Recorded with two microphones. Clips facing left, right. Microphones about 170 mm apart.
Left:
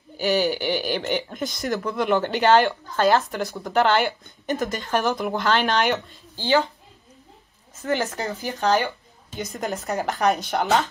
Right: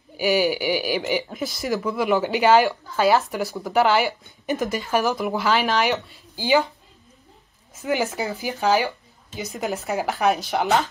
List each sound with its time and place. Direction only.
0.2 s speech: 10° right (ahead or behind)
7.8 s speech: 10° right (ahead or behind)